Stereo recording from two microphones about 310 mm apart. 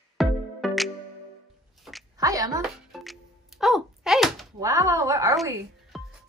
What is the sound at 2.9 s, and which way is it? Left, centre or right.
Music, centre.